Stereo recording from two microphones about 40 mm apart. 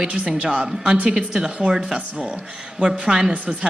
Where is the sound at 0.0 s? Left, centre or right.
Right.